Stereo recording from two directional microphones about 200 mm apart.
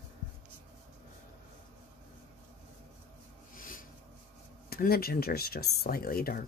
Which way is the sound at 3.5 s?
45° left (ahead or behind).